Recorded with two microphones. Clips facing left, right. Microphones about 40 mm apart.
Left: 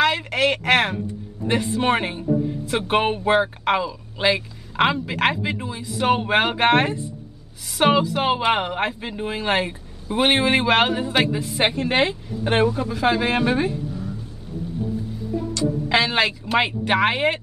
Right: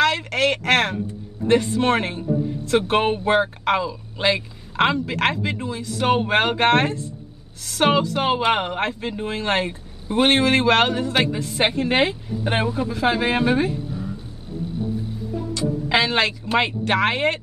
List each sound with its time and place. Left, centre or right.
0.0 s speech: centre
15.9 s speech: centre